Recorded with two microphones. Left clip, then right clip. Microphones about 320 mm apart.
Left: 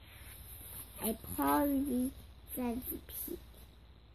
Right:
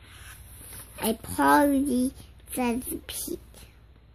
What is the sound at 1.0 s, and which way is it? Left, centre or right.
A child's voice, centre.